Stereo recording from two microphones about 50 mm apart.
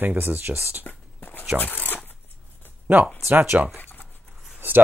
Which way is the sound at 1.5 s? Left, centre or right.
Left.